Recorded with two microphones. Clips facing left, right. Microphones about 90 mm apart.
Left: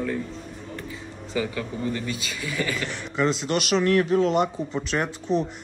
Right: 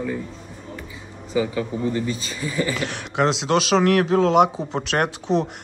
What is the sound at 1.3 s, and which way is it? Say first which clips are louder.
Speech: right 5 dB; 15° right (ahead or behind).